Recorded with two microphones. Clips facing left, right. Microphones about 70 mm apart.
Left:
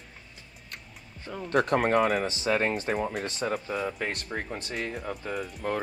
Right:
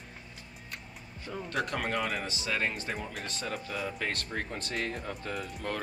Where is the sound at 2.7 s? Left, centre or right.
Left.